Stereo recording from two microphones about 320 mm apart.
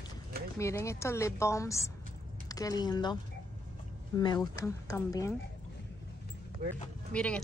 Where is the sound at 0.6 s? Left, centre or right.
Centre.